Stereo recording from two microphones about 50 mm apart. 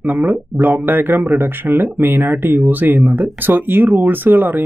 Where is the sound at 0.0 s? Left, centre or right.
Right.